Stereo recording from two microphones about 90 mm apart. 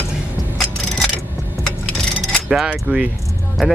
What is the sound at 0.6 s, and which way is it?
Mechanisms, 5° left (ahead or behind).